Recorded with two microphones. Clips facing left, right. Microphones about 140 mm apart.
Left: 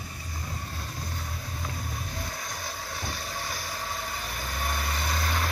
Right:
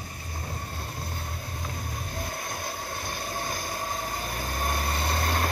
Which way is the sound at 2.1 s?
50° right (ahead or behind).